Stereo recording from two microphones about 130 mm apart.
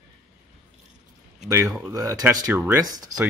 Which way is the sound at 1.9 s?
30° right (ahead or behind).